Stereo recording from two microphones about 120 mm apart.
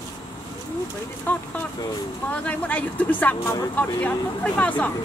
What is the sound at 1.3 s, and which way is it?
Speech, 15° left (ahead or behind).